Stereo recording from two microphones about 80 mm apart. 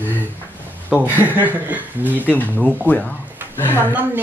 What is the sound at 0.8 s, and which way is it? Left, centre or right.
Speech, right.